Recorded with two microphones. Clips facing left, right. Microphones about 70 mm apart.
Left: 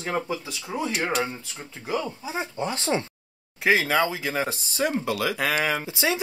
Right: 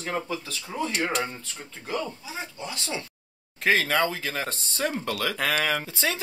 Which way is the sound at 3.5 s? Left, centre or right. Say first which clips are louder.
Left 2 dB; centre.